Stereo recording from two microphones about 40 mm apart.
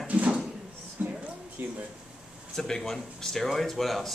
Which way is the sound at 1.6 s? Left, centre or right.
Right.